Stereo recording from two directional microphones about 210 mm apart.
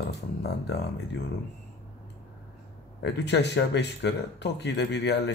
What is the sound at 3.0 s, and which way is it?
Speech, 55° left (ahead or behind).